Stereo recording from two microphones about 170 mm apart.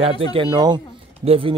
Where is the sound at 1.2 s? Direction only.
30° right (ahead or behind).